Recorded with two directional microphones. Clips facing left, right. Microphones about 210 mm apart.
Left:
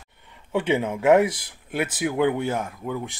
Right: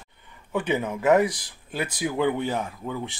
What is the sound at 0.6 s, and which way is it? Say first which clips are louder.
Speech: left 3 dB; 25° left (ahead or behind).